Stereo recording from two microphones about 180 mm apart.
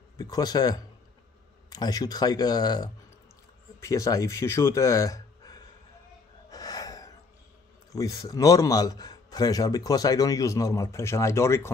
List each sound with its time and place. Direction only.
0.2 s a man's voice: 20° left (ahead or behind)
6.5 s gasp: 20° left (ahead or behind)
7.9 s a man's voice: 20° left (ahead or behind)